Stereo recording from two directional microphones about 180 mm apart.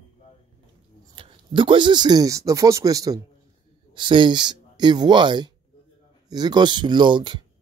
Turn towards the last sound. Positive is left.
turn(degrees=-25)  # may be behind; listen again after turning